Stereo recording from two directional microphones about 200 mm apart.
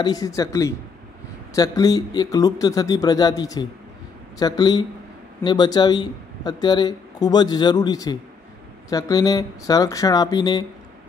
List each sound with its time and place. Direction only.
0.0 s speech: 20° left (ahead or behind)